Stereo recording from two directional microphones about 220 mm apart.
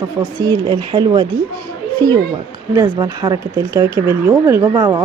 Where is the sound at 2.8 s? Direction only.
15° right (ahead or behind).